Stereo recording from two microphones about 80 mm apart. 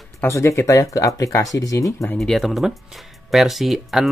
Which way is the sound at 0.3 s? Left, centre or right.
Left.